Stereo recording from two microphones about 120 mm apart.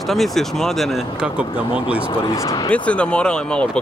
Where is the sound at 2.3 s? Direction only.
30° left (ahead or behind).